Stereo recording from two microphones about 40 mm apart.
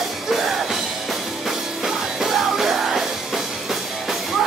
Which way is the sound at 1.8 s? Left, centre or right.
Centre.